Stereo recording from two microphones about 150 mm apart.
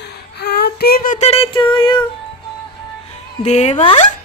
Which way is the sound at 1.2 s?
40° left (ahead or behind).